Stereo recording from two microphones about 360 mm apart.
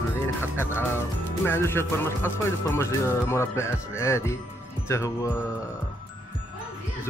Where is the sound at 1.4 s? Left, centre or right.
Centre.